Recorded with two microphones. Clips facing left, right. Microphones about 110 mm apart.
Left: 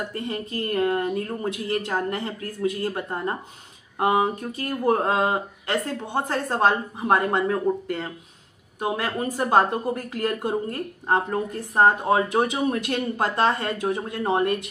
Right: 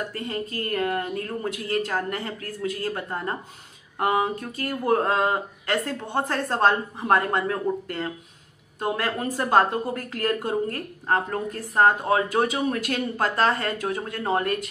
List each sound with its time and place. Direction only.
0.1 s speech: 20° left (ahead or behind)